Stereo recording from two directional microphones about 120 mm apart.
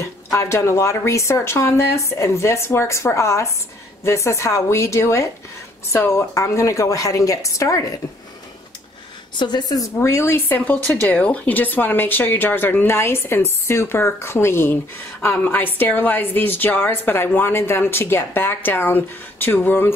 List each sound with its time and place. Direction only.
0.0 s speech: 25° left (ahead or behind)
9.4 s a woman's voice: 35° left (ahead or behind); by 19.9 s 15° left (ahead or behind)